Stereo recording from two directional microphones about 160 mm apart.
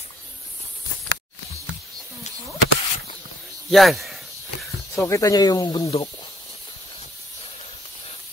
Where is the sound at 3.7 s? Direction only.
Centre (ahead or behind).